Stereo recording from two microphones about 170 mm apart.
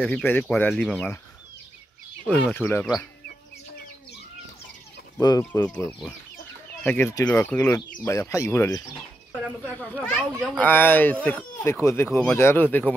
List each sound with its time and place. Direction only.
0.0 s speech: 5° left (ahead or behind)
2.2 s speech: 5° left (ahead or behind)
5.4 s speech: 10° left (ahead or behind)